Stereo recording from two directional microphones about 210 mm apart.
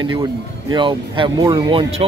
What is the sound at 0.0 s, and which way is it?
Speech, 20° right (ahead or behind).